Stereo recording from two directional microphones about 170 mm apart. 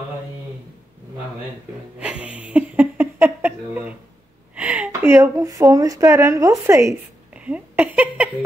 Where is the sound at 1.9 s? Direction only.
5° right (ahead or behind).